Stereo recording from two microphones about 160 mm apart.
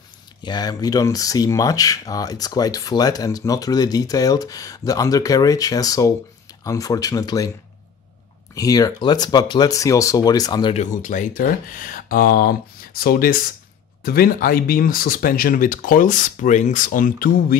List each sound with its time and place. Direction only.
0.4 s speech: 25° left (ahead or behind)
8.5 s speech: 20° left (ahead or behind)
10.7 s speech: 50° left (ahead or behind)